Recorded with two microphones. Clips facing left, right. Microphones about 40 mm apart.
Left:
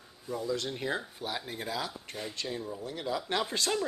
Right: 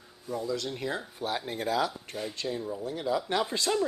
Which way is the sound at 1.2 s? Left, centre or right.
Centre.